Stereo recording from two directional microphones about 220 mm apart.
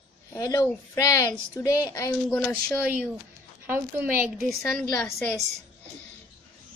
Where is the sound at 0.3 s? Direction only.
15° left (ahead or behind).